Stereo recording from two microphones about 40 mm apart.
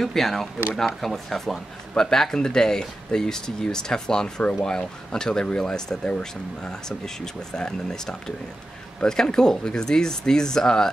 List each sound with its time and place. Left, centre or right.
0.0 s speech: centre
6.0 s speech: left
6.7 s speech: centre